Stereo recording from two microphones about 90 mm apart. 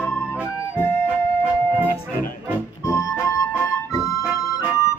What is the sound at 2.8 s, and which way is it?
Music, 30° left (ahead or behind).